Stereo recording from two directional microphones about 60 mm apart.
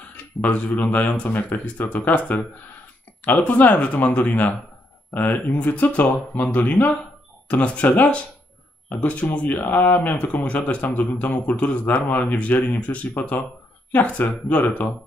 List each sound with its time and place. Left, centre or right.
0.0 s speech: left